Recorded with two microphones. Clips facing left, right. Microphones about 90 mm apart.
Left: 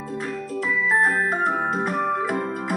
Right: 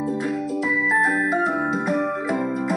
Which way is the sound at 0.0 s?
15° right (ahead or behind).